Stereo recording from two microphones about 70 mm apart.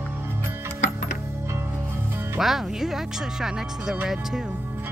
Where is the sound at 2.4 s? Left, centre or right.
Centre.